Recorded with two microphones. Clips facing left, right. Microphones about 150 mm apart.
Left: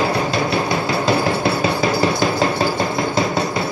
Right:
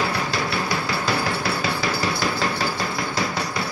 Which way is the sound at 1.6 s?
20° left (ahead or behind).